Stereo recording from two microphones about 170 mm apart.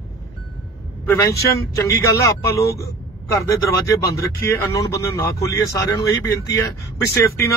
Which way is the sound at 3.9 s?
20° left (ahead or behind).